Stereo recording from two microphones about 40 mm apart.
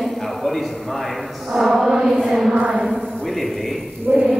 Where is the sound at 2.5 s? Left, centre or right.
Right.